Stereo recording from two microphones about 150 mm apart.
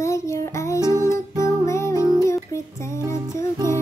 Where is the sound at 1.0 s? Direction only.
20° left (ahead or behind).